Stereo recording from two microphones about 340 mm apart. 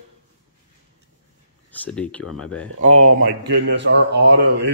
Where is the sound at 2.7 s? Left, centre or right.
Right.